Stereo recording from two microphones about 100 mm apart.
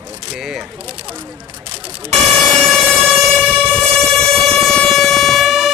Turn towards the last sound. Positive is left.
turn(degrees=0)  # may be behind; listen again after turning